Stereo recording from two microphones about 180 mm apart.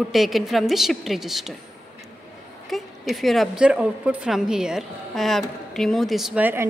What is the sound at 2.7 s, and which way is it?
A woman's voice, centre (ahead or behind).